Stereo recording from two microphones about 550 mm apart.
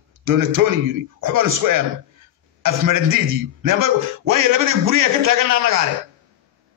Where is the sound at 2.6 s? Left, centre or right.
Right.